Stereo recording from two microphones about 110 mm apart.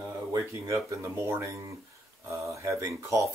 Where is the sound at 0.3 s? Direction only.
25° right (ahead or behind).